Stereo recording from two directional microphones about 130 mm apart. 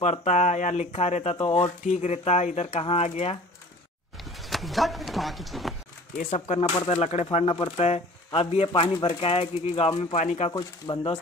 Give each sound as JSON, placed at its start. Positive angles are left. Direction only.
{"t": 0.0, "sound": "speech", "side_deg": 60}
{"t": 4.2, "sound": "speech", "side_deg": 0}
{"t": 6.5, "sound": "speech", "side_deg": 60}
{"t": 10.5, "sound": "speech", "side_deg": 35}